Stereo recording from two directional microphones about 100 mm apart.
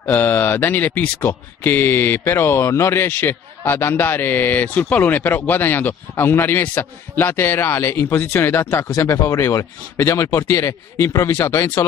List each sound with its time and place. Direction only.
0.0 s speech: 20° left (ahead or behind)